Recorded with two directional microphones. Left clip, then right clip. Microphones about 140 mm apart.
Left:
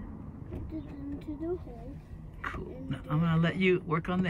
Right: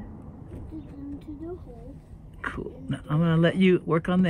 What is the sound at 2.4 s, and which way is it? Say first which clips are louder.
Speech: right 5 dB; 45° right (ahead or behind).